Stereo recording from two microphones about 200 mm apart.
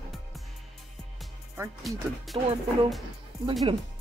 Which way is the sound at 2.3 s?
25° right (ahead or behind).